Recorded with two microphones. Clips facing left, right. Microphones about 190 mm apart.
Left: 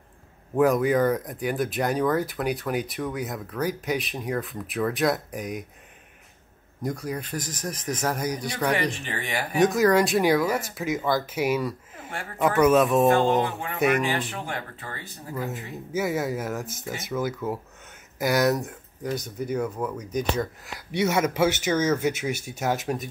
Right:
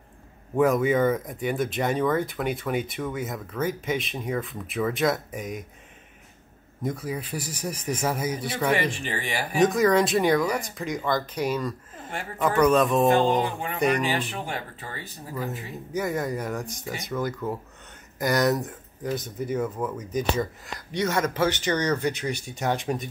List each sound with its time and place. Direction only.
0.6 s speech: centre (ahead or behind)
6.8 s speech: 5° right (ahead or behind)
14.1 s speech: 15° right (ahead or behind)
15.3 s speech: 10° left (ahead or behind)